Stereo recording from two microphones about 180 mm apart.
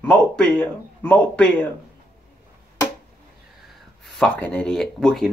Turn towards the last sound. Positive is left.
turn(degrees=0)  # may be behind; listen again after turning